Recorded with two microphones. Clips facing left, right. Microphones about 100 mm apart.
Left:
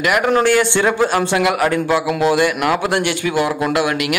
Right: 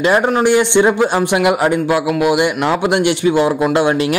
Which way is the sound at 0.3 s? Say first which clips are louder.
Right 2 dB; 20° right (ahead or behind).